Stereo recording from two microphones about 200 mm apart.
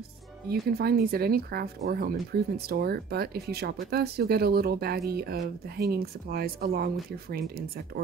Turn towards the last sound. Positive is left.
turn(degrees=-50)  # may be behind; listen again after turning